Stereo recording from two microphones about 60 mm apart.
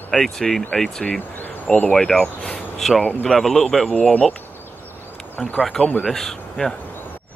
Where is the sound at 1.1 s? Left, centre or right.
Left.